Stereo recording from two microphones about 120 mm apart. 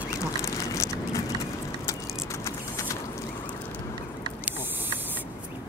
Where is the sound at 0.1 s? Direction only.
25° left (ahead or behind).